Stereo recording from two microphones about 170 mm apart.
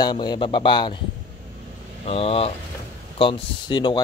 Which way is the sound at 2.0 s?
35° left (ahead or behind).